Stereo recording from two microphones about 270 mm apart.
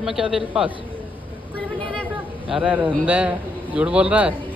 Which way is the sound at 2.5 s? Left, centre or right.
Centre.